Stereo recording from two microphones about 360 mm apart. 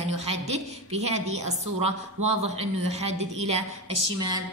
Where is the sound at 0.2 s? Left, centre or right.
Centre.